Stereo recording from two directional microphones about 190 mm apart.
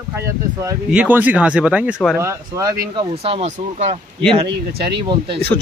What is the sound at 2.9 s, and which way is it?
Speech, 30° right (ahead or behind).